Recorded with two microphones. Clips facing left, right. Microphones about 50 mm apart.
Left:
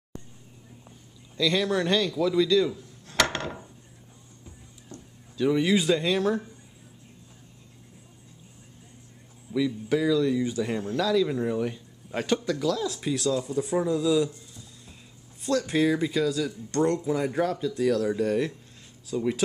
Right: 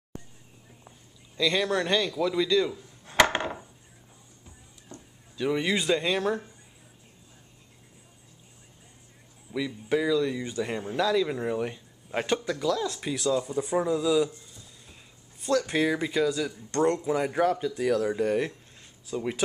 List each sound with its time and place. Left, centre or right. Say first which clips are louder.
0.8 s speech: left 2 dB; centre
3.2 s a sound: right 3 dB; right
4.9 s a sound: left 2 dB; centre
5.4 s a man's voice: left 4 dB; centre
9.5 s a man's voice: left 3 dB; centre
15.4 s speech: right 1 dB; centre
15.7 s a man's voice: left 2 dB; centre